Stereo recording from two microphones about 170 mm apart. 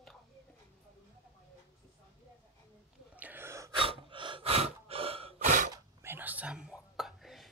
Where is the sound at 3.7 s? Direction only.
30° right (ahead or behind).